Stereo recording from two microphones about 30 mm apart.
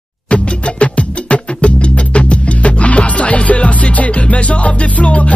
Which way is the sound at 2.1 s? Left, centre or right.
Left.